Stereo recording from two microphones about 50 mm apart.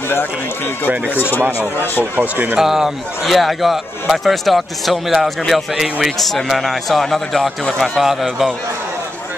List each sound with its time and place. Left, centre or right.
1.1 s speech: left
2.1 s speech: right
2.6 s speech: centre